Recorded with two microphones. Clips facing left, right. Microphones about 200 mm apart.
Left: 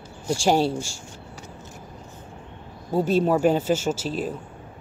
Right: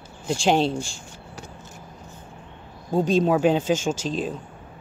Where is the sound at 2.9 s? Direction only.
10° left (ahead or behind).